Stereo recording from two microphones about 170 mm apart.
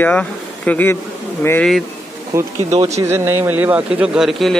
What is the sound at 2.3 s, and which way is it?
Speech, 15° right (ahead or behind).